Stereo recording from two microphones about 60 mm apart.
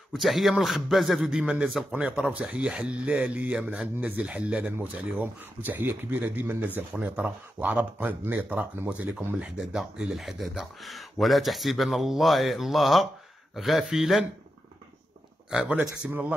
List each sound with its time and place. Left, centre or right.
0.1 s speech: centre
1.2 s speech: centre
5.2 s speech: right
9.6 s speech: centre
15.5 s speech: centre